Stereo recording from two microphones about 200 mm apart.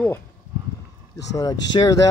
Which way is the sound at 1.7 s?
25° left (ahead or behind).